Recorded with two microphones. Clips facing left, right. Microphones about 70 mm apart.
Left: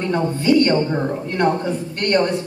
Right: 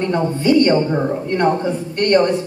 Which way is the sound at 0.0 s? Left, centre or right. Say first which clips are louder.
Right 2 dB; centre.